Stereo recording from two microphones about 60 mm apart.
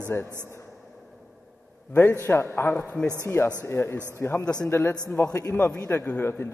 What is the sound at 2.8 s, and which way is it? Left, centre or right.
Speech, centre.